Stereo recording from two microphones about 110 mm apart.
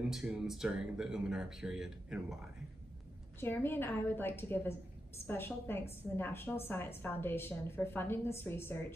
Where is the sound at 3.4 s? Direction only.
20° left (ahead or behind).